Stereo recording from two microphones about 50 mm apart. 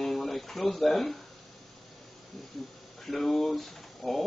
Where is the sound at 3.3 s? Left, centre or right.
Centre.